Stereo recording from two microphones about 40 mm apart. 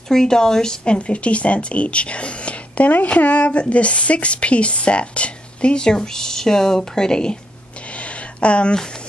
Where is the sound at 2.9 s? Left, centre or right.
Left; by 7.3 s centre.